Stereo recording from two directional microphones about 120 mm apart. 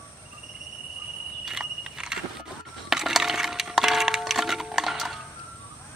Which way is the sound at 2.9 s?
5° right (ahead or behind).